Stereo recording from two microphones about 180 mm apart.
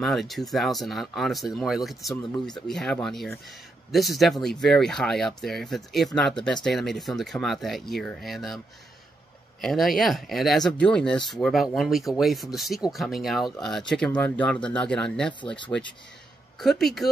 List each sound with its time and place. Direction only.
0.0 s speech: centre (ahead or behind)
9.6 s speech: centre (ahead or behind)
16.5 s speech: centre (ahead or behind)